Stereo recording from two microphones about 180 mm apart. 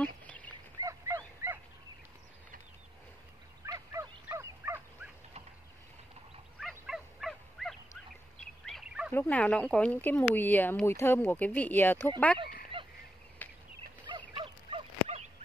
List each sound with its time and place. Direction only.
0.0 s duck: 10° left (ahead or behind)
0.5 s a sound: 20° right (ahead or behind)
3.6 s fowl: 15° right (ahead or behind)
6.7 s fowl: centre (ahead or behind)
8.4 s turkey: centre (ahead or behind)
9.1 s speech: 10° left (ahead or behind)
13.4 s a sound: 10° left (ahead or behind)
14.0 s fowl: 25° right (ahead or behind)